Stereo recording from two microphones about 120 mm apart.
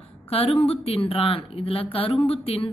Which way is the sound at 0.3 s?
55° left (ahead or behind).